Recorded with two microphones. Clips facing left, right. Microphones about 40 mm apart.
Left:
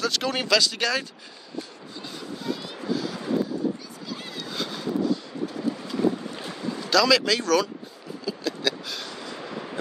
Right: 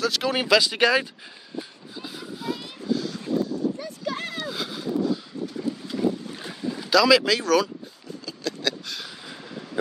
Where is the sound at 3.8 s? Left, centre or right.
Right.